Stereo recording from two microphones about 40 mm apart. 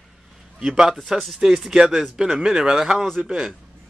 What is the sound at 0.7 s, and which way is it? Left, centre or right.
A man's voice, centre.